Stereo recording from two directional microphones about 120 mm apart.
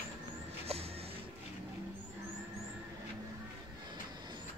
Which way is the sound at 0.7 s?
60° right (ahead or behind).